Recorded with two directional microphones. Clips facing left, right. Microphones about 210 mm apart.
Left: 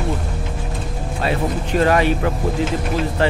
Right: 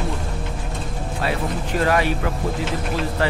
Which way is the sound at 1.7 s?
20° left (ahead or behind).